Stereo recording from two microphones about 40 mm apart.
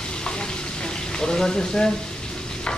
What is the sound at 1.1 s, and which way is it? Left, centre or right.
Speech, centre.